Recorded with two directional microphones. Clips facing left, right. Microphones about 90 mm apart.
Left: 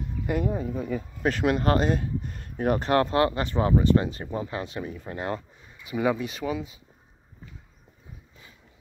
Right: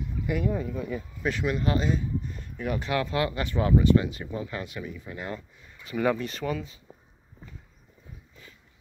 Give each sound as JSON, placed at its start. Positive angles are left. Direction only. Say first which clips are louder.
{"t": 0.5, "sound": "speech", "louder": "left 1 dB", "side_deg": 35}
{"t": 5.9, "sound": "speech", "louder": "left 1 dB", "side_deg": 10}